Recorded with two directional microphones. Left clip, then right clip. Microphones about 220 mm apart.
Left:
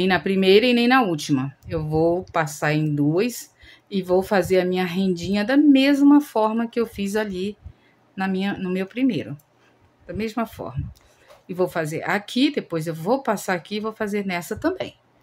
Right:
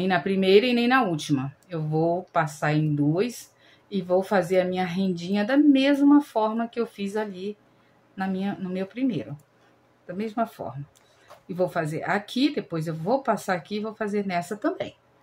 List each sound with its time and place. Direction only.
0.0 s speech: 25° left (ahead or behind)